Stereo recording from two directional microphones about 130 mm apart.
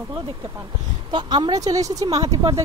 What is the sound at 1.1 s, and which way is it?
A woman's voice, 35° right (ahead or behind).